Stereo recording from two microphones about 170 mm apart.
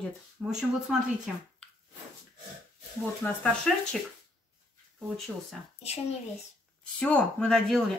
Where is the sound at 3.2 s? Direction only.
5° left (ahead or behind).